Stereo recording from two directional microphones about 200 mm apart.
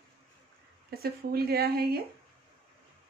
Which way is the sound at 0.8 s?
50° right (ahead or behind).